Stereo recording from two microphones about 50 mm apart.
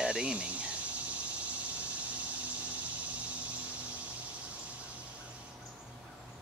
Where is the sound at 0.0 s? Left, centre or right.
Centre.